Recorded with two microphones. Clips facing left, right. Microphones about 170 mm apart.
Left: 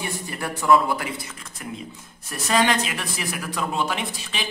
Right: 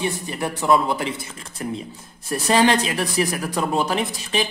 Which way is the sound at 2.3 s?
30° right (ahead or behind).